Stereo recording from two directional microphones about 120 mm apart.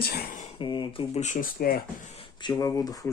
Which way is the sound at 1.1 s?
75° left (ahead or behind).